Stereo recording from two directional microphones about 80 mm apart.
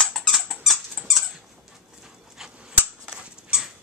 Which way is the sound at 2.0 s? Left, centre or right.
Centre.